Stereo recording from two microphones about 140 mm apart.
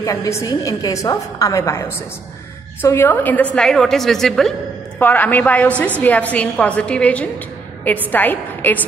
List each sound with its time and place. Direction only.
0.0 s a woman's voice: 25° left (ahead or behind); by 5.0 s centre (ahead or behind)
5.0 s a woman's voice: 10° left (ahead or behind)